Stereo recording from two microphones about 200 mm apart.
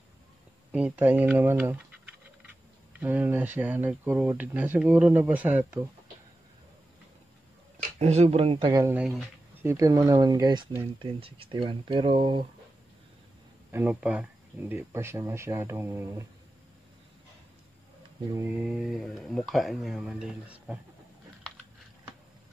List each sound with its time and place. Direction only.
0.7 s speech: 5° right (ahead or behind)
3.0 s speech: 10° right (ahead or behind)
8.0 s speech: 35° right (ahead or behind); by 10.9 s 15° right (ahead or behind)
11.0 s speech: 25° right (ahead or behind)
13.7 s speech: 10° right (ahead or behind)
18.3 s speech: 10° right (ahead or behind)